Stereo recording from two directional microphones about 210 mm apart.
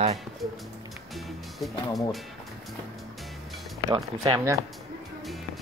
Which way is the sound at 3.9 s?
20° right (ahead or behind).